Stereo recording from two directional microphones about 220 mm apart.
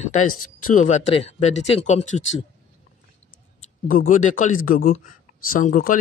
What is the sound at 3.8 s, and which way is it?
Speech, 40° left (ahead or behind).